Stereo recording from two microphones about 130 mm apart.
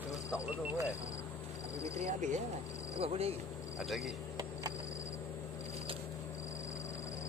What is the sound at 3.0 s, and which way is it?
Speech, 50° right (ahead or behind).